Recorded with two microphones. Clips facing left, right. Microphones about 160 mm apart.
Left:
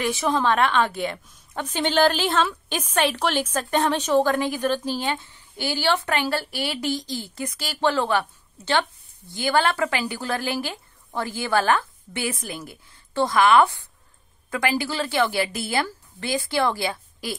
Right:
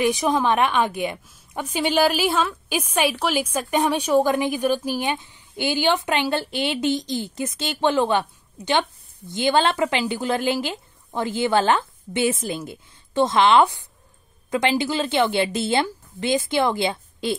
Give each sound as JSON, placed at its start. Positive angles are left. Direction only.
{"t": 0.0, "sound": "a woman's voice", "side_deg": -15}